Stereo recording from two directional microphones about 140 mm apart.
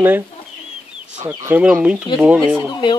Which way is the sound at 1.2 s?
15° right (ahead or behind).